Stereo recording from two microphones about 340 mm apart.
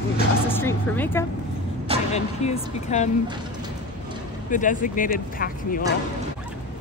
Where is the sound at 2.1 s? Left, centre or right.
Centre.